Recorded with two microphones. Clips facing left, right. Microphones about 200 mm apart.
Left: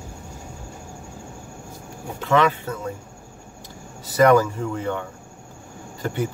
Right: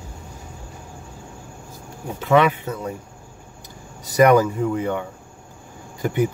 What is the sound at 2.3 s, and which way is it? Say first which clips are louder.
Speech: right 2 dB; 15° right (ahead or behind).